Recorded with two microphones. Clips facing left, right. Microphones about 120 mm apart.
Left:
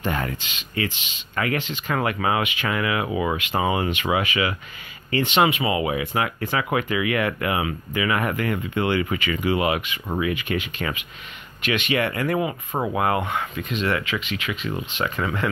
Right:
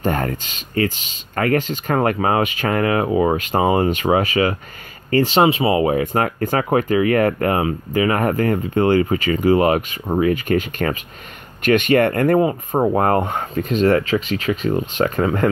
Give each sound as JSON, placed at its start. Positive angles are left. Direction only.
{"t": 0.0, "sound": "speech", "side_deg": -45}